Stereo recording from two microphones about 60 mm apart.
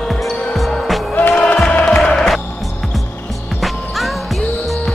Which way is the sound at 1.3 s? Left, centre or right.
Centre.